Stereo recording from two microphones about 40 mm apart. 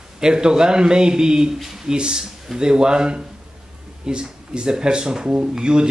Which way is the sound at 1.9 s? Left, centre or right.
Right.